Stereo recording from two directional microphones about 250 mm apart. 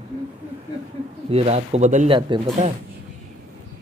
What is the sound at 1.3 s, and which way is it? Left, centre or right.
Speech, right.